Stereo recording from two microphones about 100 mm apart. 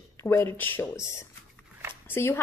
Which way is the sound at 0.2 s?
30° left (ahead or behind).